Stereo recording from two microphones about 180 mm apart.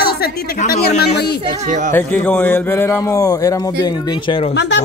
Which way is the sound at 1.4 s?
40° right (ahead or behind).